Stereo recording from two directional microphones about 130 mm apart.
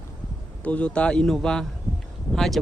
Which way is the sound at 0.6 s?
10° left (ahead or behind).